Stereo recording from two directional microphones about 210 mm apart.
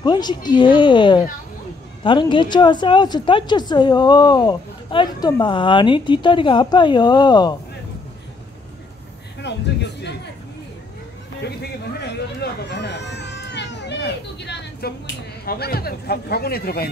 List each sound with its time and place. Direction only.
0.0 s a woman's voice: 20° left (ahead or behind)
9.4 s speech: 55° left (ahead or behind)
11.4 s a sound: 50° left (ahead or behind)
15.4 s a man's voice: 45° left (ahead or behind)